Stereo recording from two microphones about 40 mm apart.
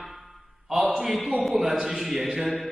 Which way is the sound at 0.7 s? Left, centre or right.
Centre.